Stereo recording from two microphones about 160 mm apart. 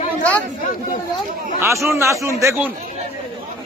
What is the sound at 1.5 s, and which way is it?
A man's voice, 15° right (ahead or behind).